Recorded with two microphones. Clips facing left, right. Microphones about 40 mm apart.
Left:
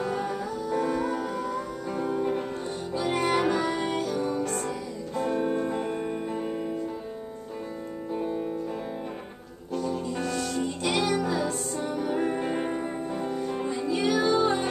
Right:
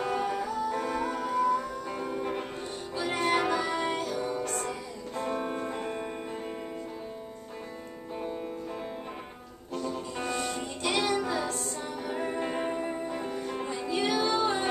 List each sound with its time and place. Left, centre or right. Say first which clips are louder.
0.0 s music: even; centre
9.7 s music: left 4 dB; centre
10.2 s music: right 1 dB; right
10.6 s music: left 4 dB; centre